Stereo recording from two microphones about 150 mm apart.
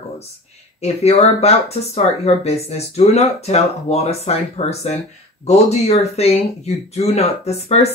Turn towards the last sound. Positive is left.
turn(degrees=45)  # may be behind; listen again after turning